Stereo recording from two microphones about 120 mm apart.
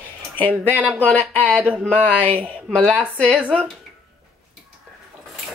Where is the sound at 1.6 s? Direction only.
10° right (ahead or behind).